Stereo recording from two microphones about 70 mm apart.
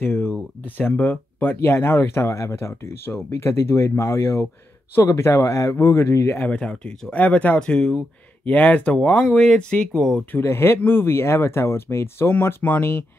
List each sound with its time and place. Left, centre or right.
0.0 s speech: left
1.6 s speech: left
6.4 s speech: centre
10.4 s speech: left